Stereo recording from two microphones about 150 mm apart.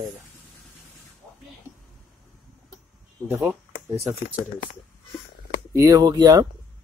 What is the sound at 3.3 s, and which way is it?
Speech, 15° right (ahead or behind).